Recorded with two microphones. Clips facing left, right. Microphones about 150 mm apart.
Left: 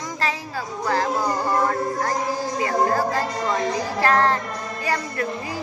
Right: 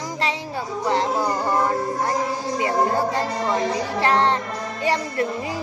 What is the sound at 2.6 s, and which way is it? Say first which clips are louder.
Speech: right 1 dB; 25° right (ahead or behind).